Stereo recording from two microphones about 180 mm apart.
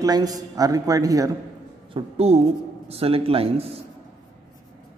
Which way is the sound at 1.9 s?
35° right (ahead or behind).